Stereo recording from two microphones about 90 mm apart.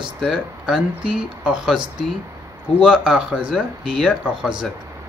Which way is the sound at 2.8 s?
10° right (ahead or behind).